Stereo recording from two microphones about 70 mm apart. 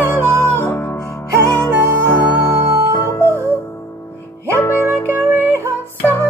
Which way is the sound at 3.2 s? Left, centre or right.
Right.